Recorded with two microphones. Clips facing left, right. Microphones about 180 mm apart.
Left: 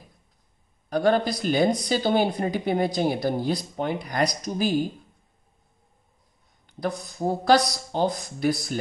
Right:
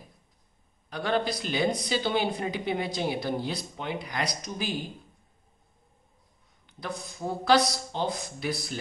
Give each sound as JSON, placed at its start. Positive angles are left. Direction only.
{"t": 0.8, "sound": "a woman's voice", "side_deg": 45}
{"t": 7.2, "sound": "a woman's voice", "side_deg": 40}